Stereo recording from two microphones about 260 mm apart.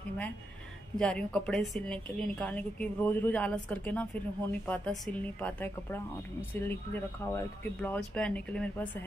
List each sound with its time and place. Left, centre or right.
0.9 s a woman's voice: centre